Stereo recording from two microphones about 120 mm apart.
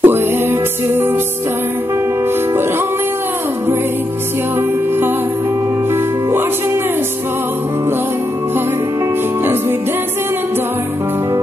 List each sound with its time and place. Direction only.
0.0 s music: 20° right (ahead or behind)
9.4 s music: 20° right (ahead or behind)